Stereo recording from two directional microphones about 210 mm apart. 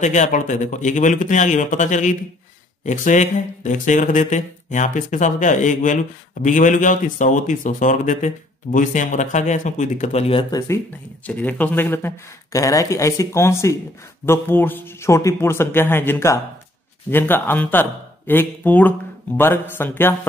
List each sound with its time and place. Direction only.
0.0 s speech: 35° left (ahead or behind)
11.2 s speech: 10° left (ahead or behind)